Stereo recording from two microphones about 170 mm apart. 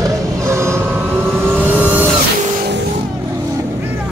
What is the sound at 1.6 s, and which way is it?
Vehicle, 10° right (ahead or behind).